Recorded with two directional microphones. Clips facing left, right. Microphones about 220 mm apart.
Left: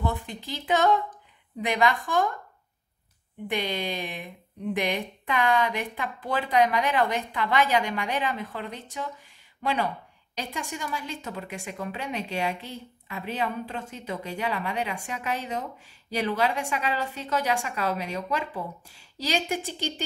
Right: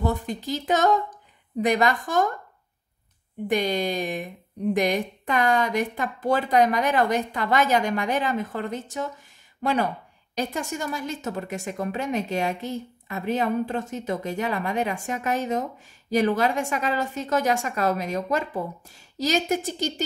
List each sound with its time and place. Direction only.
0.0 s a woman's voice: 40° right (ahead or behind)
3.4 s a woman's voice: 40° right (ahead or behind)